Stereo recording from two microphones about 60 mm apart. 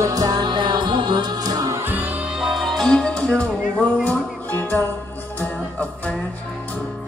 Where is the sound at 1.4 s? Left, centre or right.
Right.